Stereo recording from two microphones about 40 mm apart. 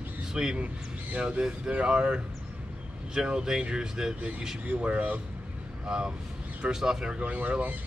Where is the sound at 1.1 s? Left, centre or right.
Right; by 4.2 s centre.